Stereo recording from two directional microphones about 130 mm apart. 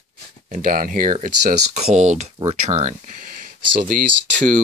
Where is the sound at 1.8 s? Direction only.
65° right (ahead or behind).